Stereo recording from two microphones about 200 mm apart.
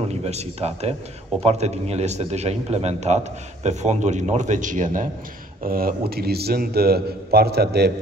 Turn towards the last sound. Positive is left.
turn(degrees=-55)  # may be behind; listen again after turning